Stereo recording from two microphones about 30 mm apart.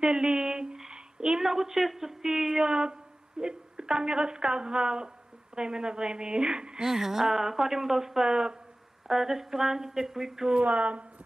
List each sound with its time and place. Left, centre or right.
0.0 s a woman's voice: right
0.7 s a sound: right
1.4 s speech: centre
2.6 s a woman's voice: right
6.9 s speech: centre
8.3 s a woman's voice: right
9.0 s speech: centre
10.6 s a woman's voice: right